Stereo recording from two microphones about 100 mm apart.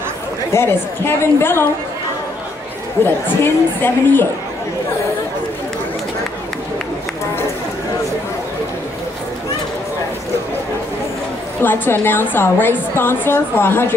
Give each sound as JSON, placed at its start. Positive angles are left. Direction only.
{"t": 0.5, "sound": "a woman's voice", "side_deg": 25}
{"t": 3.0, "sound": "a woman's voice", "side_deg": 25}
{"t": 11.6, "sound": "a woman's voice", "side_deg": 20}